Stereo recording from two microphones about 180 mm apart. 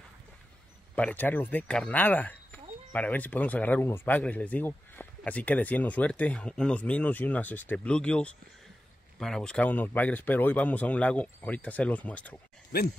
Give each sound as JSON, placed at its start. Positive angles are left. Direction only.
{"t": 0.9, "sound": "speech", "side_deg": 10}
{"t": 12.7, "sound": "speech", "side_deg": 60}